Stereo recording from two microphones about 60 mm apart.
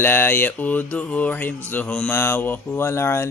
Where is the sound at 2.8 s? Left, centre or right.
Left.